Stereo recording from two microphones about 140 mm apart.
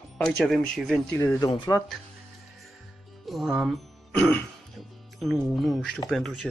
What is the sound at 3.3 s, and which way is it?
Speech, centre (ahead or behind).